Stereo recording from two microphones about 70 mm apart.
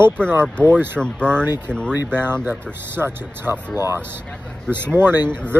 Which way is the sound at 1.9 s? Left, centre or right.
Right.